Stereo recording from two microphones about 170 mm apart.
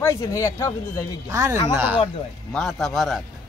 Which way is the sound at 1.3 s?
20° right (ahead or behind).